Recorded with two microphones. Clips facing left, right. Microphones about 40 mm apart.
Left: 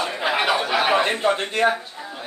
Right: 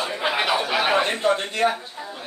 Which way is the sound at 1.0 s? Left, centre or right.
Left.